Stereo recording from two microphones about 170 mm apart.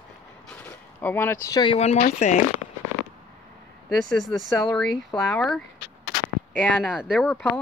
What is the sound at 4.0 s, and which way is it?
Speech, centre (ahead or behind).